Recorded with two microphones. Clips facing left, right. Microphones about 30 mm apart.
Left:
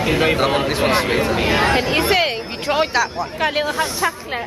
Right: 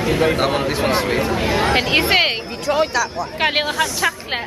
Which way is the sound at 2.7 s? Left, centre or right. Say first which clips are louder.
Even; left.